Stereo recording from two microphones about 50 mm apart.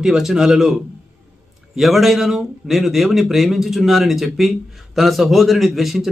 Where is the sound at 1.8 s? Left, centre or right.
Centre.